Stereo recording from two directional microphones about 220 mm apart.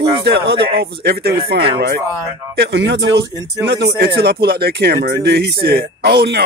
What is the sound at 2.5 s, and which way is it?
Speech, 50° right (ahead or behind).